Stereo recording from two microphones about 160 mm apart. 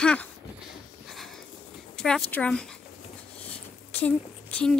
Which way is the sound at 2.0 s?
5° left (ahead or behind).